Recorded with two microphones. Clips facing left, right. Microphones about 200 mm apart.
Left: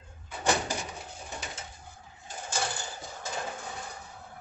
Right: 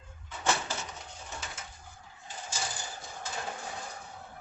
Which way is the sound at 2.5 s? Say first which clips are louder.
Left 6 dB; 65° left (ahead or behind).